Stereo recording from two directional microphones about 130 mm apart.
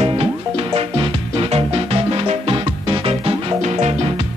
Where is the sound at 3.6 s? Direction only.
60° right (ahead or behind).